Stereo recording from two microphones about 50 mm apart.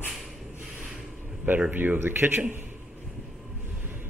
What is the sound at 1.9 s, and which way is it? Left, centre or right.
Speech, right.